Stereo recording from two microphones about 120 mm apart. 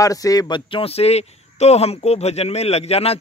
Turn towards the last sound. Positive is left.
turn(degrees=55)  # may be behind; listen again after turning